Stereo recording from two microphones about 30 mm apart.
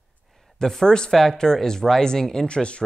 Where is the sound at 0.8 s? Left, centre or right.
Left.